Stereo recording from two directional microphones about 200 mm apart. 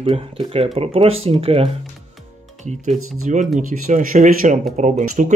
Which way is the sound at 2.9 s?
90° right.